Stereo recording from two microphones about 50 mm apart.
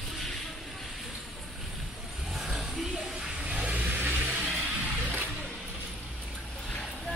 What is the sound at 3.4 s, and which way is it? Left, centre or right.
Vehicle, right.